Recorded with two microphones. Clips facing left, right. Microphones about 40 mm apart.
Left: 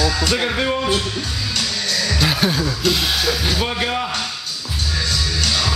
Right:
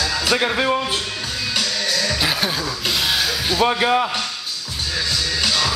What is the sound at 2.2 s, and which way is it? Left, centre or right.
Speech, centre.